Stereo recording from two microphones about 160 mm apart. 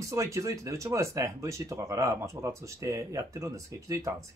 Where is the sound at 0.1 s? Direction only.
20° right (ahead or behind).